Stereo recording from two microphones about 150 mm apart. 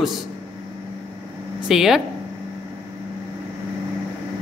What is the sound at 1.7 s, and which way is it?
Speech, centre (ahead or behind).